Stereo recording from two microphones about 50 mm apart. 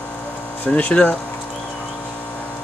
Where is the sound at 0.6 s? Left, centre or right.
Left.